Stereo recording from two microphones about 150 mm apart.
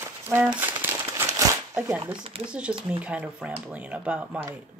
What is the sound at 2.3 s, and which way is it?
Speech, 40° right (ahead or behind).